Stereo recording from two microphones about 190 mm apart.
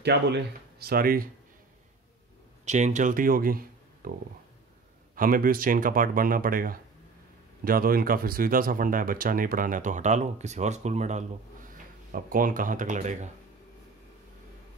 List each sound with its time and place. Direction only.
0.0 s speech: 60° right (ahead or behind)
2.6 s speech: 40° right (ahead or behind)
5.1 s speech: 45° right (ahead or behind)